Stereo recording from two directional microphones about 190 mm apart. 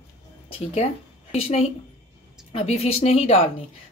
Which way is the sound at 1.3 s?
35° left (ahead or behind).